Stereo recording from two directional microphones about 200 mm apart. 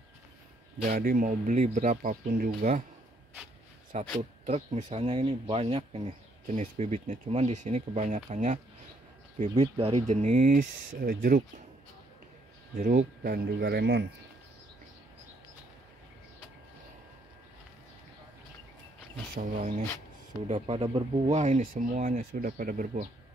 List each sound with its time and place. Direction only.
0.8 s speech: 45° right (ahead or behind)
3.9 s speech: 35° right (ahead or behind)
12.7 s speech: 45° right (ahead or behind)
19.3 s speech: 45° right (ahead or behind)
20.4 s speech: 30° right (ahead or behind)